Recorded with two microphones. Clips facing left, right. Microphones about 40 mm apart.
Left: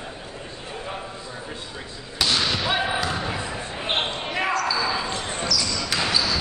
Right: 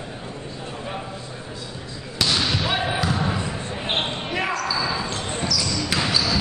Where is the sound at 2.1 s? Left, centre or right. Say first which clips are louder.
Even; centre.